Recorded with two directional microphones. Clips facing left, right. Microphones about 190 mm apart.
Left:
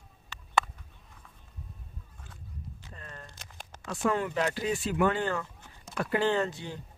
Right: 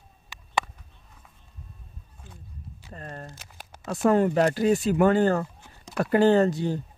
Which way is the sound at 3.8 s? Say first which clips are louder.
Right 8 dB; 40° right (ahead or behind).